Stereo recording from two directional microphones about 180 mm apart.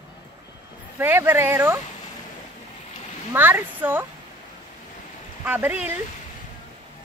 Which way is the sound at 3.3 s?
10° right (ahead or behind).